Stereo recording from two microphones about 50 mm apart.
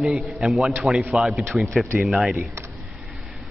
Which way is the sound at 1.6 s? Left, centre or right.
Centre.